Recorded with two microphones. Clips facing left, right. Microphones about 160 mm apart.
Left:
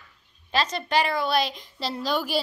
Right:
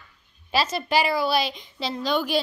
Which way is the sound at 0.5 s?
5° right (ahead or behind).